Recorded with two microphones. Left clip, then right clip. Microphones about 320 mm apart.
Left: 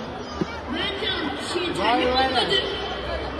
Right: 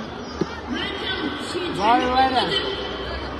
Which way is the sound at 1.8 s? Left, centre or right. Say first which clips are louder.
Right 3 dB; centre.